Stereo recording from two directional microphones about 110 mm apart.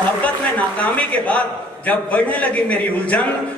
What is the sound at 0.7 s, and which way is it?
A man's voice, 10° left (ahead or behind).